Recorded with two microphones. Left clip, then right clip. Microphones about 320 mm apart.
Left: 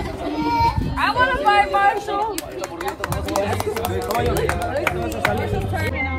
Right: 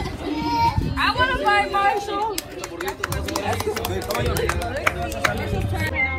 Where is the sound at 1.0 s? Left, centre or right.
Centre.